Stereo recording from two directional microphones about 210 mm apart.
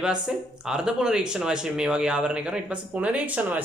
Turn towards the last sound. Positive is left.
turn(degrees=-5)  # may be behind; listen again after turning